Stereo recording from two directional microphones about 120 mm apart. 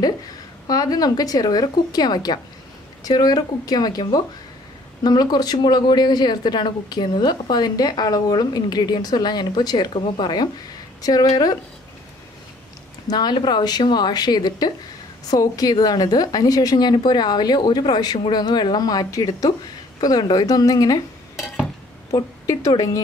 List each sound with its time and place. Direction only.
0.7 s a woman's voice: 30° left (ahead or behind)
13.1 s speech: 40° left (ahead or behind)
22.1 s speech: 25° left (ahead or behind)